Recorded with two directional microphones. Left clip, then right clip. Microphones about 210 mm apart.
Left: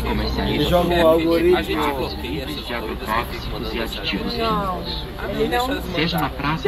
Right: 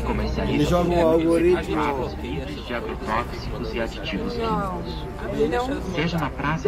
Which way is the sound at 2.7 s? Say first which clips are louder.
Left 2 dB; 20° right (ahead or behind).